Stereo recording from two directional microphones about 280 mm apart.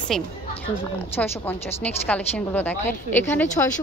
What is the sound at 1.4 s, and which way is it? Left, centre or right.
A woman's voice, centre.